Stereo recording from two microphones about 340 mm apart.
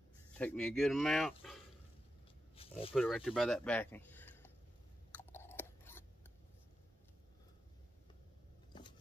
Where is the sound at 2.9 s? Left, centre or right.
Centre.